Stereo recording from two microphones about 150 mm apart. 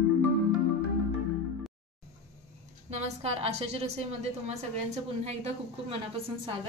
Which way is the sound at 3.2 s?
45° right (ahead or behind).